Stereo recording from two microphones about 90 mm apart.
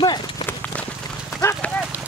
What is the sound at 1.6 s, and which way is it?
Dog, 15° left (ahead or behind).